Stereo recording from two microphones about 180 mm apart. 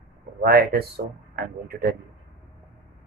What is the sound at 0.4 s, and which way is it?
Speech, 60° right (ahead or behind).